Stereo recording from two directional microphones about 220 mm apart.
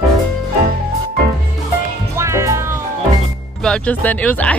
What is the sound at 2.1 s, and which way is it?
Music, 15° right (ahead or behind).